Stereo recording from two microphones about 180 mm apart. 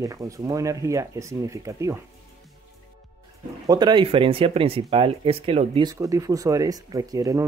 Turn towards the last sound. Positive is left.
turn(degrees=-20)  # may be behind; listen again after turning